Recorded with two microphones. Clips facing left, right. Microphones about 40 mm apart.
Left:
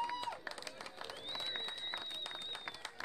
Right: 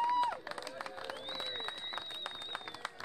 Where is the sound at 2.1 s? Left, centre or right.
Centre.